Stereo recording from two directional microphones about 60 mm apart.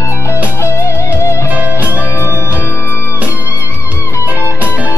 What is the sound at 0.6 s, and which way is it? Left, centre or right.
Music, left.